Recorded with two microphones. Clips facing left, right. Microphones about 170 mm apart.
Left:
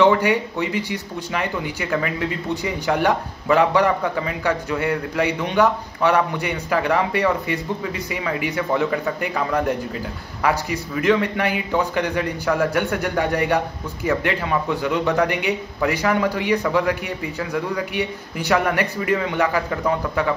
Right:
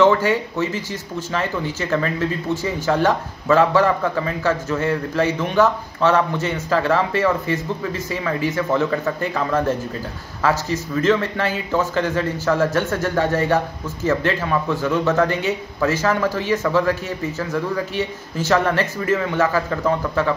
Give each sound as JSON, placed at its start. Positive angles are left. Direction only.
{"t": 0.0, "sound": "speech", "side_deg": 15}